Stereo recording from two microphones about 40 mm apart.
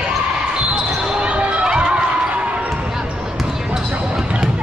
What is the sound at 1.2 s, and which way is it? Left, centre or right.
Basketball bounce, right.